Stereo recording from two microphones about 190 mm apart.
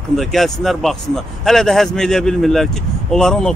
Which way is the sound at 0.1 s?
Centre (ahead or behind).